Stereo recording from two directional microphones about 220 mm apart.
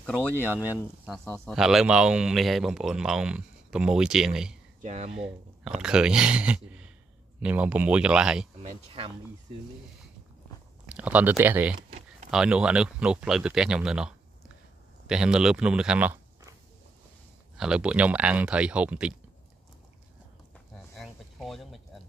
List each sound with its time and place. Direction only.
0.4 s speech: 10° right (ahead or behind)
4.8 s speech: 30° right (ahead or behind)
5.1 s speech: 5° right (ahead or behind)
8.6 s speech: 25° right (ahead or behind)
10.9 s speech: 5° right (ahead or behind)
17.6 s speech: 5° right (ahead or behind)
20.9 s a sound: centre (ahead or behind)